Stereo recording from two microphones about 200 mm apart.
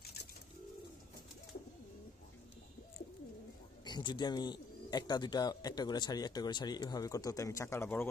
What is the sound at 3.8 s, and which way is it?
A man's voice, 20° left (ahead or behind).